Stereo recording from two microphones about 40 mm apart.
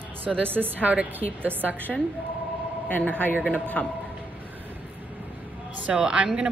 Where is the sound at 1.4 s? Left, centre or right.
Right.